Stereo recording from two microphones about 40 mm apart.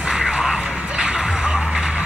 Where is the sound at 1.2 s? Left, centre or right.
Centre.